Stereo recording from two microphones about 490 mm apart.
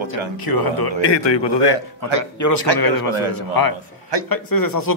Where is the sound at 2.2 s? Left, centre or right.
Left.